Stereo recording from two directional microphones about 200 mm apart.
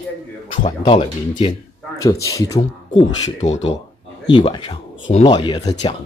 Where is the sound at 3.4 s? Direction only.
35° left (ahead or behind).